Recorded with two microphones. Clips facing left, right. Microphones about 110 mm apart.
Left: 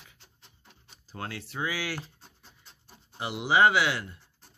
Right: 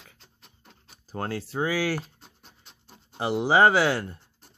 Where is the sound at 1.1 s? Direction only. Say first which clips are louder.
Right 7 dB; 40° right (ahead or behind).